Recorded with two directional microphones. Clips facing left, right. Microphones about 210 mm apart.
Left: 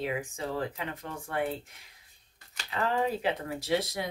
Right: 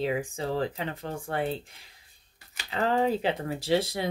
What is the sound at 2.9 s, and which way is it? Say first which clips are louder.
Speech: right 4 dB; 30° right (ahead or behind).